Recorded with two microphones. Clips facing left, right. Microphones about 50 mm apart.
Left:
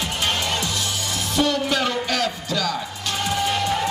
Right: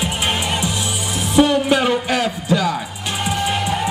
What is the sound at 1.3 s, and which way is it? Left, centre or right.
Music, centre.